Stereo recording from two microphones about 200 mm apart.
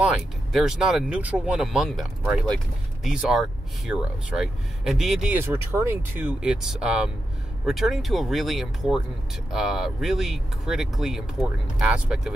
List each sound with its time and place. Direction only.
0.0 s speech: centre (ahead or behind)